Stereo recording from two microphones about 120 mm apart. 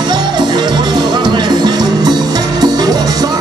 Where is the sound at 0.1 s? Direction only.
35° right (ahead or behind).